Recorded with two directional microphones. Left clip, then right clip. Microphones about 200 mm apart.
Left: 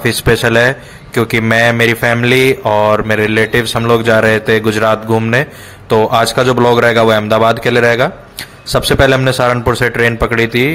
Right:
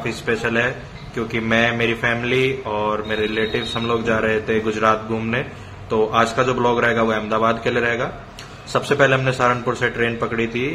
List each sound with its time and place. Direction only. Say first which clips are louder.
0.0 s a man's voice: left 10 dB; 45° left (ahead or behind)